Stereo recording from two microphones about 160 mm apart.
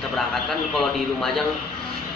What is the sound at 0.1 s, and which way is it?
A man's voice, centre (ahead or behind).